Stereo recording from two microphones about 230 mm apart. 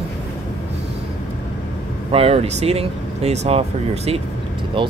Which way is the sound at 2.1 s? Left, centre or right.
Right.